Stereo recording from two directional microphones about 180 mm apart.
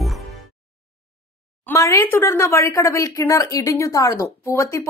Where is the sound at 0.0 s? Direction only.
Centre (ahead or behind).